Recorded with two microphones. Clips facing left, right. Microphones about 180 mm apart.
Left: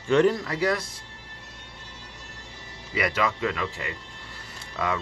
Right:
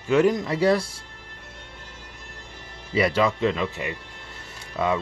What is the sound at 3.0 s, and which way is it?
Speech, 30° right (ahead or behind).